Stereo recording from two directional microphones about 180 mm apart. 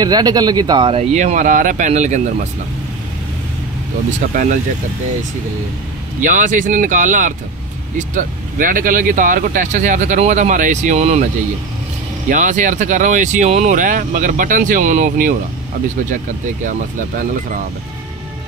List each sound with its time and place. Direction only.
0.0 s speech: 20° right (ahead or behind); by 2.2 s 40° right (ahead or behind)
4.3 s speech: 45° right (ahead or behind)
6.2 s speech: 45° right (ahead or behind)
12.3 s speech: 45° right (ahead or behind)